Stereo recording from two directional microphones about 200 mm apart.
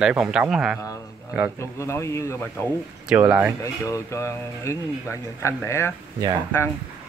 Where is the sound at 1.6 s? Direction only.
15° left (ahead or behind).